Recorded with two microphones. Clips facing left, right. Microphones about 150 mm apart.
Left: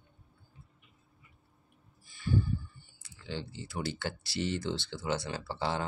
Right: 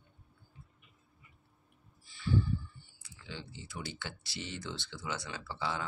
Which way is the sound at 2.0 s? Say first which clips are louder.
Left 1 dB; 45° left (ahead or behind).